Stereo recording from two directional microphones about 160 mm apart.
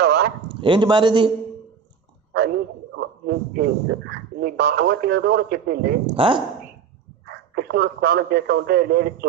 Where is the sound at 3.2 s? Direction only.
65° right (ahead or behind).